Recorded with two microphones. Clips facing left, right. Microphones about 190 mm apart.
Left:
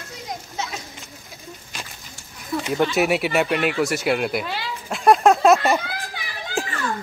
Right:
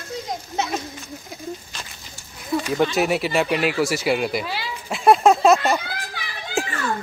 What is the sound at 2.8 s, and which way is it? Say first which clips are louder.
Speech: left 2 dB; centre (ahead or behind).